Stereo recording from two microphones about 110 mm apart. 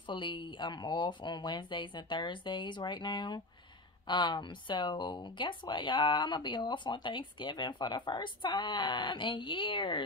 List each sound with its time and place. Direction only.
0.0 s speech: 45° left (ahead or behind)